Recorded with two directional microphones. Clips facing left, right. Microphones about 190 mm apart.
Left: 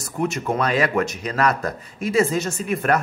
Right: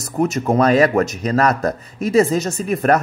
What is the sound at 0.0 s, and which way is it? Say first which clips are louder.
Speech: right 5 dB; 40° right (ahead or behind).